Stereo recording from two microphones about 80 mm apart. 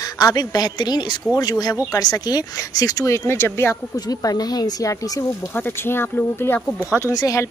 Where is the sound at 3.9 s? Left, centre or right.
Left.